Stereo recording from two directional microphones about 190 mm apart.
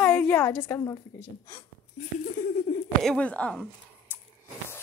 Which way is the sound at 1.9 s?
45° left (ahead or behind).